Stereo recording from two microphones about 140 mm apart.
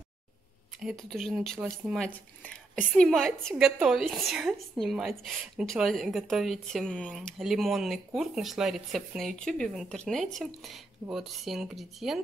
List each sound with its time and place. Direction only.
0.7 s a woman's voice: centre (ahead or behind)